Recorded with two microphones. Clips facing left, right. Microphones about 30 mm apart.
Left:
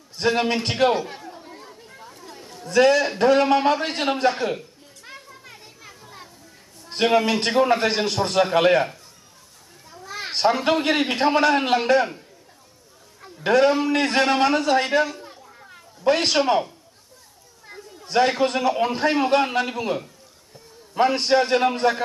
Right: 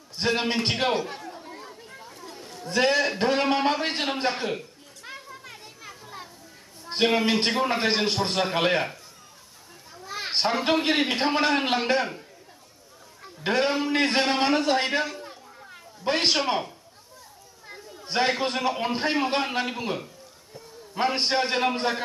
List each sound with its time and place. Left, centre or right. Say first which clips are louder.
0.4 s chatter: left 5 dB; centre
2.6 s a man's voice: left 5 dB; centre
4.5 s children playing: left 3 dB; centre
7.0 s a man's voice: left 4 dB; centre
7.2 s a man's voice: left 4 dB; centre
8.4 s a man's voice: left 8 dB; centre
9.8 s children playing: left 1 dB; centre
10.4 s a man's voice: left 4 dB; centre
13.5 s a man's voice: left 6 dB; centre
15.4 s children playing: even; centre
16.1 s a man's voice: left 5 dB; centre
17.6 s a sound: left 2 dB; centre
18.1 s a man's voice: left 5 dB; centre